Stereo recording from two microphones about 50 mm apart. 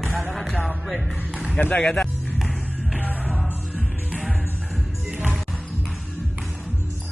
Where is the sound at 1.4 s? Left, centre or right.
Left.